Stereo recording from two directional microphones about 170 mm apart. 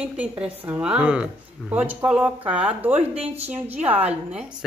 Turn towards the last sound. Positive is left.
turn(degrees=-10)  # may be behind; listen again after turning